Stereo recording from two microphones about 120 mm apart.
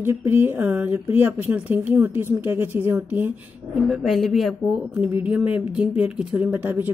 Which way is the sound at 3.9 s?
5° right (ahead or behind).